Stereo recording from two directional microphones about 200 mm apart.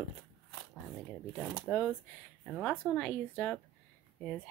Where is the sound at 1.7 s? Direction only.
5° left (ahead or behind).